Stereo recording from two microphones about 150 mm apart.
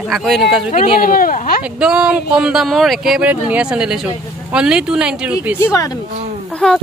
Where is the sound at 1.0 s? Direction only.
70° left (ahead or behind).